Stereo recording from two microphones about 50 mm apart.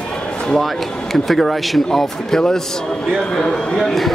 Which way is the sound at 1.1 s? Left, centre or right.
Centre.